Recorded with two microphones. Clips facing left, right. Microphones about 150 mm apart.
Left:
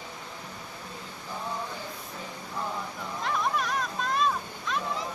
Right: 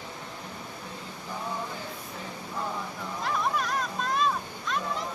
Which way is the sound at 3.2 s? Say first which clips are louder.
Even; centre (ahead or behind).